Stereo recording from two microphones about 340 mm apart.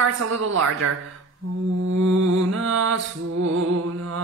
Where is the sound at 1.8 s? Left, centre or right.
Right.